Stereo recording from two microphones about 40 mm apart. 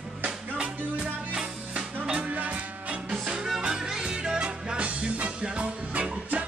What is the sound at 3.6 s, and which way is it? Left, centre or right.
Music, centre.